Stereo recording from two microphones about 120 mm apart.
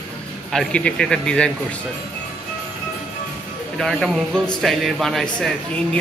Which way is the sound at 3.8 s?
Centre (ahead or behind).